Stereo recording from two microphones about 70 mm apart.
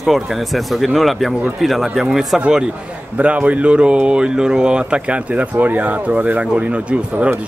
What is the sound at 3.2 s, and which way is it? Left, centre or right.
Speech, centre.